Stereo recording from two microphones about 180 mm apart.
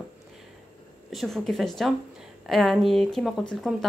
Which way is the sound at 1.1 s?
Centre (ahead or behind).